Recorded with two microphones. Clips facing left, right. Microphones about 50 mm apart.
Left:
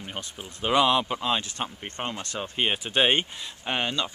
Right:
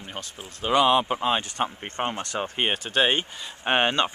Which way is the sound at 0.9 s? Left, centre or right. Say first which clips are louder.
Right 3 dB; right.